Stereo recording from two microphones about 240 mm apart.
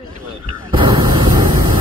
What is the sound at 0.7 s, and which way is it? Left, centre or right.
Vehicle, centre.